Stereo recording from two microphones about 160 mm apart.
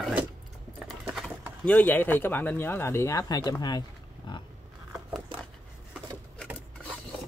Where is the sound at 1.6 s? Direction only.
10° left (ahead or behind).